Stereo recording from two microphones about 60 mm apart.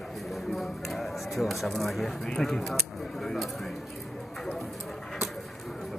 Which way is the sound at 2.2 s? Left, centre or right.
Centre.